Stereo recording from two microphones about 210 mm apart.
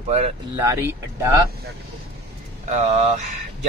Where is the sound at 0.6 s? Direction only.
10° right (ahead or behind).